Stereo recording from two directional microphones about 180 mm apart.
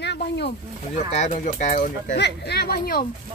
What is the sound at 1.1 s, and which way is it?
Speech, 40° left (ahead or behind).